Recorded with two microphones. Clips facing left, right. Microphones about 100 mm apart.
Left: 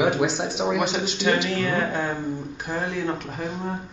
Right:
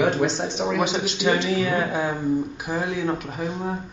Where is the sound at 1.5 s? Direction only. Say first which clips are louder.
Right 2 dB; 5° right (ahead or behind).